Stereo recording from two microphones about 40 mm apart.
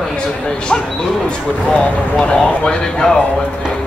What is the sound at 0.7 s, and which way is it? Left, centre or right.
Speech, left.